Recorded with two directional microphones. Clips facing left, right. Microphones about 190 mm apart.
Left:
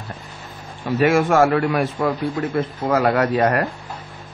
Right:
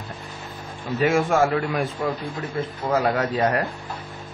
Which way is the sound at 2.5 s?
65° left (ahead or behind).